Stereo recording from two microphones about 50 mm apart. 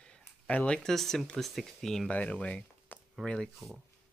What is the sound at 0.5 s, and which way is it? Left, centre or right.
Speech, left.